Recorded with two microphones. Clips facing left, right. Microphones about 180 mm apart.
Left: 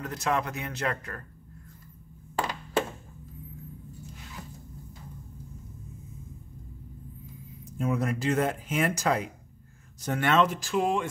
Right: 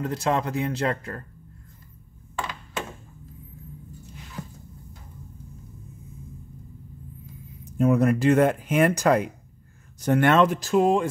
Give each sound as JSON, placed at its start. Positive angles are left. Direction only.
{"t": 0.0, "sound": "speech", "side_deg": -30}
{"t": 7.7, "sound": "speech", "side_deg": -60}
{"t": 10.6, "sound": "speech", "side_deg": -40}